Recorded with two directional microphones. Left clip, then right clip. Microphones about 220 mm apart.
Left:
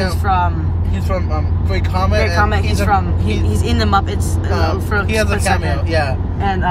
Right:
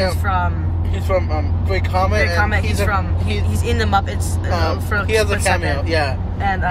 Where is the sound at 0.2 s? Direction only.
25° left (ahead or behind).